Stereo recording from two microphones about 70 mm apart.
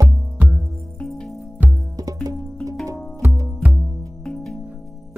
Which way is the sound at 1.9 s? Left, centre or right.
Right.